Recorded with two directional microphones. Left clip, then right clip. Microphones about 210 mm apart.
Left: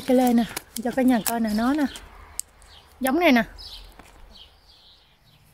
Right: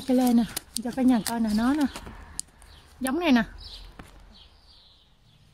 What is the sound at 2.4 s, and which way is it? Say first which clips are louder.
Clicking: left 3 dB; 15° right (ahead or behind).